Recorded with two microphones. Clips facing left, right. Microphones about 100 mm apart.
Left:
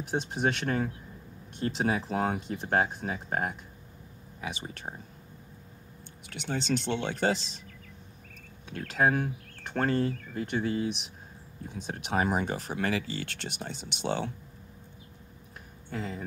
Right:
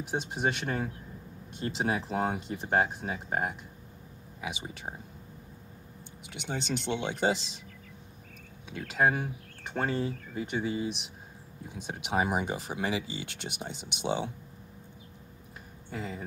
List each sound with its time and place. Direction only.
0.1 s speech: 10° right (ahead or behind)
1.5 s speech: 50° left (ahead or behind)
1.8 s speech: 5° right (ahead or behind)
6.3 s speech: 15° right (ahead or behind)
8.6 s speech: 5° right (ahead or behind)
15.9 s speech: 5° right (ahead or behind)